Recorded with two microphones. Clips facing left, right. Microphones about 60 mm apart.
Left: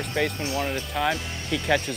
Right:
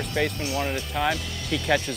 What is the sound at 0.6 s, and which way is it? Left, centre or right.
Speech, centre.